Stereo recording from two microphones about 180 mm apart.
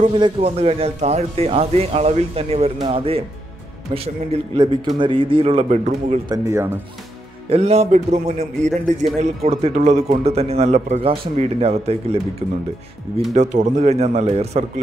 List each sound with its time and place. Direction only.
0.0 s a man's voice: 30° right (ahead or behind)
6.2 s speech: 20° right (ahead or behind)
7.4 s a man's voice: 35° right (ahead or behind)
13.3 s a man's voice: 45° right (ahead or behind)